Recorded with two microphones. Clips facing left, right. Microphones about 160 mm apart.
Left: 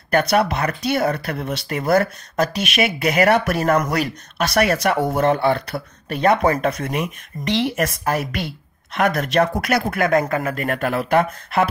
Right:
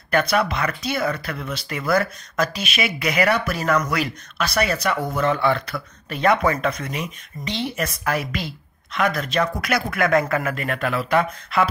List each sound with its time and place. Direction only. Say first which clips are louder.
0.1 s speech: left 3 dB; 40° left (ahead or behind)
4.6 s speech: left 4 dB; 60° left (ahead or behind)
5.1 s speech: left 2 dB; 50° left (ahead or behind)
5.4 s speech: left 2 dB; 40° left (ahead or behind)
7.3 s speech: left 5 dB; centre (ahead or behind)
8.0 s speech: right 1 dB; 40° left (ahead or behind)
8.4 s a woman's voice: left 3 dB; 55° left (ahead or behind)
9.8 s speech: left 1 dB; 40° left (ahead or behind)